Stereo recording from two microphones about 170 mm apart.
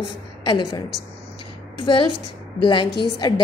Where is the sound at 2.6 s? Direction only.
30° left (ahead or behind).